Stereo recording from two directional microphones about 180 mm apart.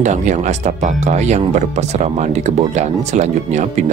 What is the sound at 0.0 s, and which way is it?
Speech, 40° right (ahead or behind).